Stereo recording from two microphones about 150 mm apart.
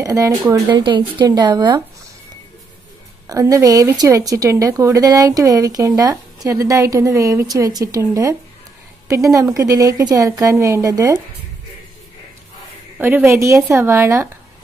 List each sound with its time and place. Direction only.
0.0 s speech: 25° right (ahead or behind)
3.3 s speech: 20° right (ahead or behind)
13.0 s a woman's voice: 10° right (ahead or behind)